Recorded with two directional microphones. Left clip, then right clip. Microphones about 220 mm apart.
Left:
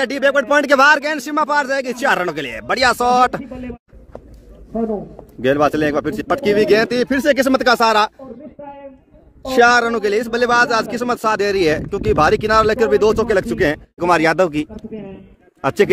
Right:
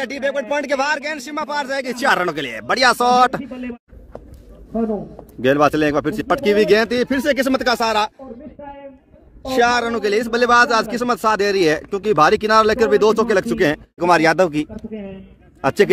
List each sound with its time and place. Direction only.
0.0 s a man's voice: 35° left (ahead or behind)
1.9 s a man's voice: centre (ahead or behind)
3.4 s speech: 55° right (ahead or behind)
5.4 s a man's voice: 10° right (ahead or behind)
7.1 s speech: 15° left (ahead or behind)
7.3 s a man's voice: 30° left (ahead or behind); by 8.1 s 45° left (ahead or behind)
8.6 s a sound: 15° left (ahead or behind)
9.6 s a man's voice: 40° left (ahead or behind)
9.8 s speech: 15° left (ahead or behind)
10.1 s a man's voice: 5° right (ahead or behind)
14.9 s a man's voice: 50° right (ahead or behind)
15.6 s a man's voice: 5° right (ahead or behind)